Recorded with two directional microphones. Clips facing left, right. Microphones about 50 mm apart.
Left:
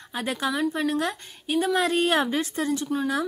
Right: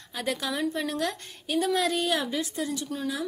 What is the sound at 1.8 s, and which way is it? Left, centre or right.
Speech, left.